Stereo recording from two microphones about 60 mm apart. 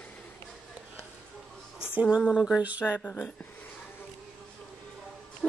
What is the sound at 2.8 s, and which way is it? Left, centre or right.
Speech, left.